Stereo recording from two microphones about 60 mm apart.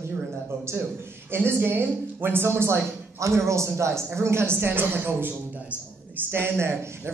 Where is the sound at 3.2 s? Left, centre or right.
Right.